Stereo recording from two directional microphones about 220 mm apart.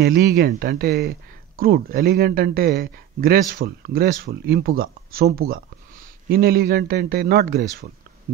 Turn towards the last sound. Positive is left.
turn(degrees=-45)  # may be behind; listen again after turning